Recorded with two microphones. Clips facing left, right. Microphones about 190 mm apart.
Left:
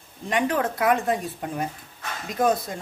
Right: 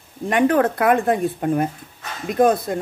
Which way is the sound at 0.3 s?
55° right (ahead or behind).